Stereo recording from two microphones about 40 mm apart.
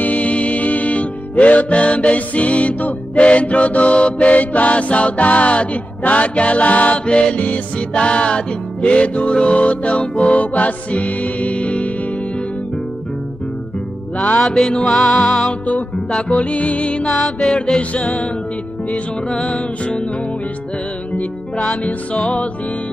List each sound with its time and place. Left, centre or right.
0.0 s music: left
7.1 s music: left
14.1 s music: left
14.4 s music: centre
17.7 s music: left
22.2 s music: left